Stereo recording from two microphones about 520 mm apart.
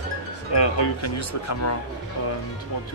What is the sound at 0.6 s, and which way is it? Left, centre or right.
Speech, left.